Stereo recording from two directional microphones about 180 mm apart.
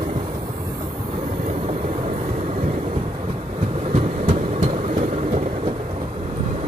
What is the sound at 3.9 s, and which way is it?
Heart sounds, 30° right (ahead or behind).